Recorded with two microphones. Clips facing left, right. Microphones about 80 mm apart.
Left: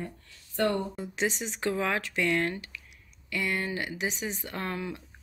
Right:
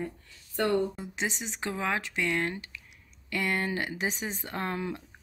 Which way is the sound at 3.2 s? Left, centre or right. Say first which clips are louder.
Right 1 dB; right.